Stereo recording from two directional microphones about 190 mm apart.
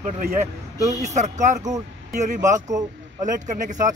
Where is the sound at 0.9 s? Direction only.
35° right (ahead or behind).